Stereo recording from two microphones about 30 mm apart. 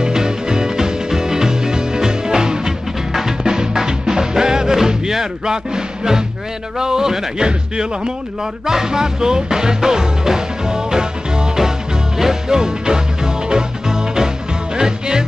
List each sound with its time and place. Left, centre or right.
0.0 s music: right
5.1 s speech: centre
8.6 s music: centre